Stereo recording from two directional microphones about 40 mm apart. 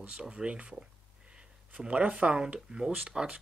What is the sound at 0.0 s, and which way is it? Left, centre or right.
Speech, right.